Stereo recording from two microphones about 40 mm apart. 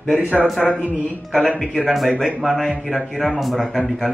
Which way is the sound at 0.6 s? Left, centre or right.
Centre.